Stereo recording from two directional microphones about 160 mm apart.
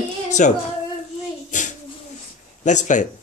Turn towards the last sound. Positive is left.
turn(degrees=50)  # may be behind; listen again after turning